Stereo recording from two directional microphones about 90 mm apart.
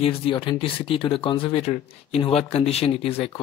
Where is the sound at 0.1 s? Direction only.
80° left.